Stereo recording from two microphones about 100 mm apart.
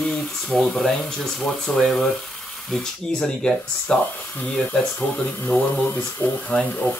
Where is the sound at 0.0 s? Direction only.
5° left (ahead or behind).